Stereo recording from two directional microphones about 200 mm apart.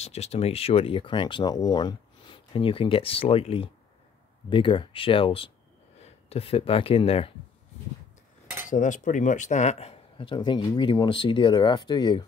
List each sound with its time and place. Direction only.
0.0 s speech: 30° left (ahead or behind)
8.6 s speech: 40° left (ahead or behind); by 12.3 s 20° left (ahead or behind)